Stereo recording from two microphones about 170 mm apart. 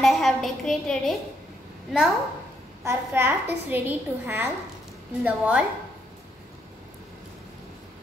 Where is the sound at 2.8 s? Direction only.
15° right (ahead or behind).